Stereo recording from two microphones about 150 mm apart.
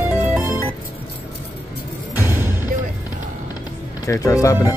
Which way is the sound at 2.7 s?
75° right (ahead or behind).